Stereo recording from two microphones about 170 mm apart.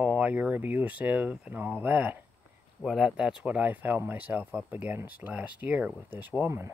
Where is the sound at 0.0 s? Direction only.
10° right (ahead or behind).